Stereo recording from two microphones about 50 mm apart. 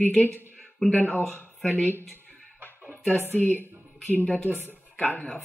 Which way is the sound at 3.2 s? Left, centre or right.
Left.